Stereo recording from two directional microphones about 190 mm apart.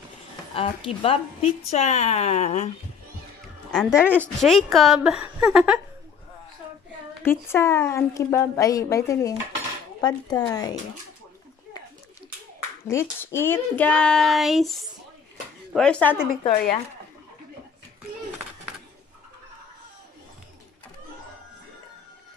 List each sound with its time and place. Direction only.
0.6 s a woman's voice: 30° left (ahead or behind)
3.7 s speech: 5° left (ahead or behind)
7.2 s a woman's voice: 10° left (ahead or behind)
12.8 s speech: 15° left (ahead or behind)